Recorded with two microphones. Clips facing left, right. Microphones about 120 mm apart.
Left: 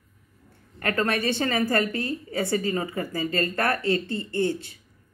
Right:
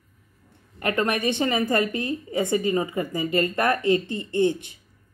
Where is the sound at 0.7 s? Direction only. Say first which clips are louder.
Right 1 dB; 20° right (ahead or behind).